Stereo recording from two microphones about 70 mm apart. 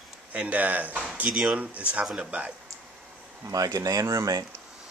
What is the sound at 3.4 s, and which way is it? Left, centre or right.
Speech, right.